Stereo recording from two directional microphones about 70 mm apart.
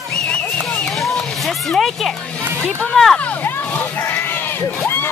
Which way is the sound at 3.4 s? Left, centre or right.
Left.